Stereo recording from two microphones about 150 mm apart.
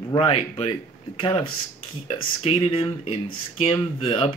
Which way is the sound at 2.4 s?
35° left (ahead or behind).